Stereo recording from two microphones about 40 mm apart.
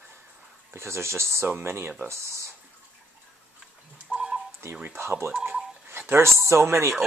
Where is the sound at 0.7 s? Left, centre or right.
Right.